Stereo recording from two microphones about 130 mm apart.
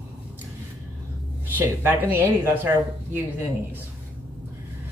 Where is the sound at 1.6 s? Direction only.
15° right (ahead or behind).